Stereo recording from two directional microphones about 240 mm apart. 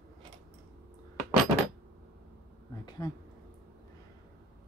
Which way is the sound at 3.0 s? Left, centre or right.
Centre.